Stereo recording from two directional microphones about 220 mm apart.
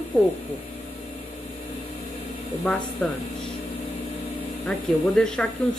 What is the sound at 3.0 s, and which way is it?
Speech, 5° left (ahead or behind).